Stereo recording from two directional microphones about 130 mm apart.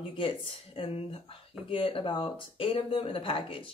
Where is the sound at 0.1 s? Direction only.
40° left (ahead or behind).